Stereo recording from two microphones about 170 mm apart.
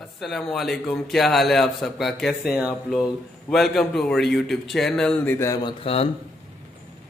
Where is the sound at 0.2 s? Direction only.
Centre (ahead or behind); by 6.0 s 30° left (ahead or behind).